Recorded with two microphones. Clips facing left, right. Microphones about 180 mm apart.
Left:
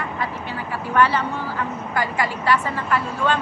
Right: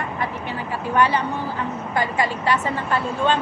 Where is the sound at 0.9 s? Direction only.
15° right (ahead or behind).